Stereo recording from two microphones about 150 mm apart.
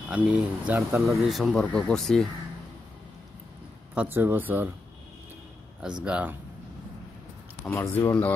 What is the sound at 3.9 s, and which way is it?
Speech, 10° right (ahead or behind).